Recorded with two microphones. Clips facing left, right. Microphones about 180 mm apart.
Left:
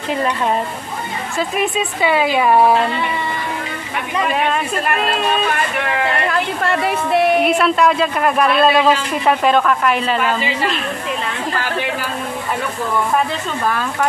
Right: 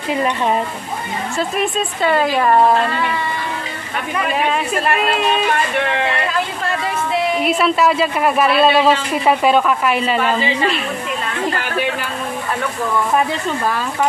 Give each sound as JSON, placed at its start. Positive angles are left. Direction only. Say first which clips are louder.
{"t": 1.6, "sound": "speech", "louder": "left 1 dB", "side_deg": 5}
{"t": 6.6, "sound": "speech", "louder": "left 3 dB", "side_deg": 60}
{"t": 7.4, "sound": "speech", "louder": "left 1 dB", "side_deg": 0}